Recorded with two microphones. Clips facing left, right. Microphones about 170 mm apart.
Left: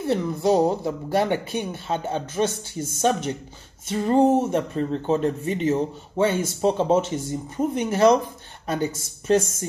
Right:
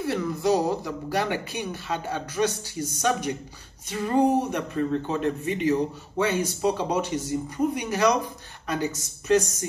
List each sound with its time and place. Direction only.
0.0 s speech: 25° left (ahead or behind)